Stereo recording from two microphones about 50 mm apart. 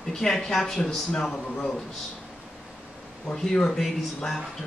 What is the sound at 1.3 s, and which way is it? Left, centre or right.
Speech, left.